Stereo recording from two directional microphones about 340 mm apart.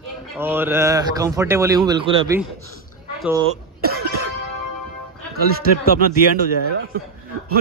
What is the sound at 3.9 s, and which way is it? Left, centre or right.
Music, right.